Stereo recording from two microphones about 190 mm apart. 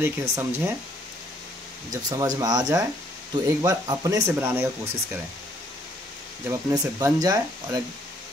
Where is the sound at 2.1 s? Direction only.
20° right (ahead or behind).